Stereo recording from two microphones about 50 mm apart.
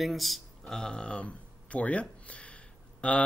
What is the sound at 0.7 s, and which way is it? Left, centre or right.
Speech, centre.